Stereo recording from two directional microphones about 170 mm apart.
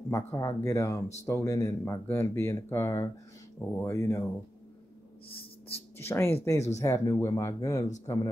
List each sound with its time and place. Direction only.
0.1 s speech: 15° left (ahead or behind)
5.9 s speech: 15° left (ahead or behind)